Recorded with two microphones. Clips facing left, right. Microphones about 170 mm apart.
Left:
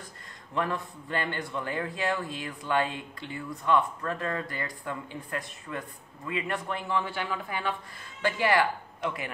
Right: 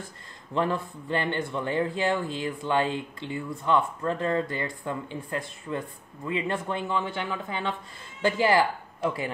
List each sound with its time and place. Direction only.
0.6 s speech: 30° right (ahead or behind)